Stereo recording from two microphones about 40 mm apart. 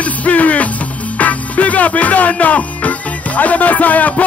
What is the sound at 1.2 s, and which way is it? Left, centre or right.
Speech, left.